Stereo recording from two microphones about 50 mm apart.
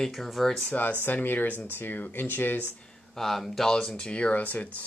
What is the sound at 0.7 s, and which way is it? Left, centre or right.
Speech, left.